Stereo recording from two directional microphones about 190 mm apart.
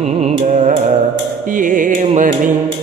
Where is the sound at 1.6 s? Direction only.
45° right (ahead or behind).